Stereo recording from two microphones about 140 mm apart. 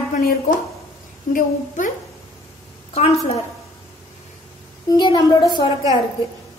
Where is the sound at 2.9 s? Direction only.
45° left (ahead or behind).